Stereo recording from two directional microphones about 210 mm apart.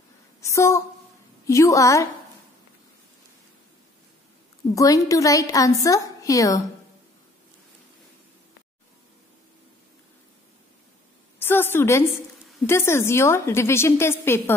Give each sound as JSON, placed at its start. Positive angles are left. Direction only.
{"t": 0.4, "sound": "a woman's voice", "side_deg": 15}
{"t": 4.7, "sound": "a woman's voice", "side_deg": 15}
{"t": 11.3, "sound": "a woman's voice", "side_deg": 10}